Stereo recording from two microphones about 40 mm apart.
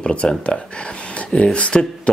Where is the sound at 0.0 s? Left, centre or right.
Left.